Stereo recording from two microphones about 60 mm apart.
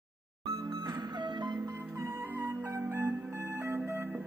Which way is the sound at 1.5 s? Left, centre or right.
Right.